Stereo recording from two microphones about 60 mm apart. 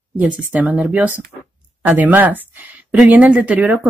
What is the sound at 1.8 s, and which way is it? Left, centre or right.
Speech, right.